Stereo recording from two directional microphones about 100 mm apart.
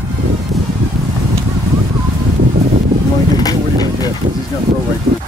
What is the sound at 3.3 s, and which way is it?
Boat, 40° left (ahead or behind).